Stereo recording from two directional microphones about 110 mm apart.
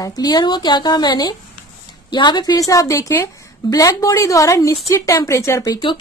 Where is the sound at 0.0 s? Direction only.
35° left (ahead or behind).